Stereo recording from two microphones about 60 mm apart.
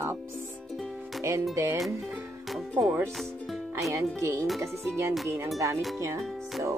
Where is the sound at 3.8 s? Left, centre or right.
Right.